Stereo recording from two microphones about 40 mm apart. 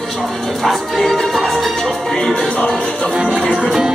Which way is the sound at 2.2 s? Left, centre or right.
Centre.